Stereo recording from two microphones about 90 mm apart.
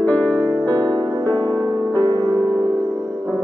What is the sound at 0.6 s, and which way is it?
Music, 50° right (ahead or behind).